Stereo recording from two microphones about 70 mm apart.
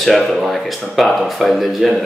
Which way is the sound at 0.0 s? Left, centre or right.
Centre.